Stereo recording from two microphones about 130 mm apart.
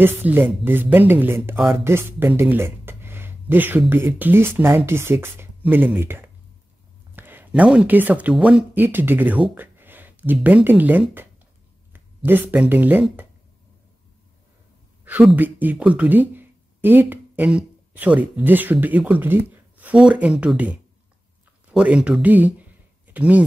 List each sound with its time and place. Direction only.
0.0 s speech: 15° right (ahead or behind)
12.3 s speech: 15° right (ahead or behind)
15.3 s speech: 15° right (ahead or behind)